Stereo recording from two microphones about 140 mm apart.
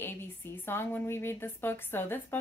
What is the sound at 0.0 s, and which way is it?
A woman's voice, 15° left (ahead or behind).